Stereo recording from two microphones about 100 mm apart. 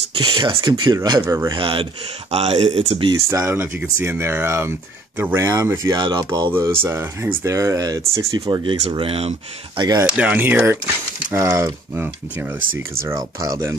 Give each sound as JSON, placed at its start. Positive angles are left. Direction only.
{"t": 0.2, "sound": "speech", "side_deg": -45}
{"t": 1.2, "sound": "speech", "side_deg": -30}
{"t": 1.5, "sound": "speech", "side_deg": -60}
{"t": 2.3, "sound": "speech", "side_deg": -90}
{"t": 3.3, "sound": "speech", "side_deg": -25}
{"t": 5.9, "sound": "speech", "side_deg": -45}
{"t": 6.8, "sound": "speech", "side_deg": -25}
{"t": 8.6, "sound": "speech", "side_deg": -65}
{"t": 9.8, "sound": "speech", "side_deg": -40}
{"t": 10.0, "sound": "speech", "side_deg": -15}
{"t": 11.3, "sound": "speech", "side_deg": -30}
{"t": 13.0, "sound": "speech", "side_deg": -30}